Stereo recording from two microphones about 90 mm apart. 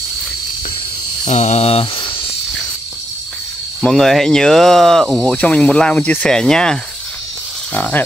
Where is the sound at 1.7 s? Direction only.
75° left (ahead or behind).